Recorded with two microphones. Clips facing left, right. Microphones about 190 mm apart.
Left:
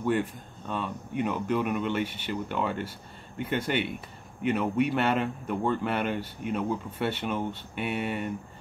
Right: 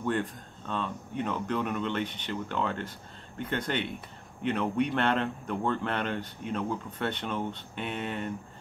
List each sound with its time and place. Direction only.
0.0 s speech: 10° left (ahead or behind)